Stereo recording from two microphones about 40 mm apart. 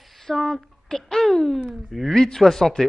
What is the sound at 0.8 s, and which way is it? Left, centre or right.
Speech, centre.